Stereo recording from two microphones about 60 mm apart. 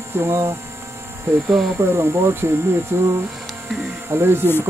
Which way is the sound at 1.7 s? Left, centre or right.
Right.